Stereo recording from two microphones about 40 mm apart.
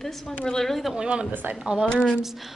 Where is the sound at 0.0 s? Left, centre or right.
Centre.